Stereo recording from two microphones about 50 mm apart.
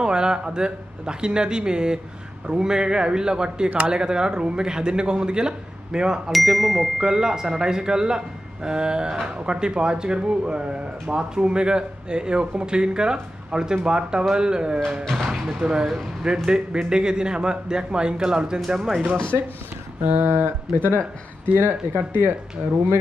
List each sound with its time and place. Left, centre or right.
0.0 s speech: centre
7.0 s speech: centre
19.3 s speech: right
20.0 s a sound: right
20.2 s speech: right
22.6 s speech: centre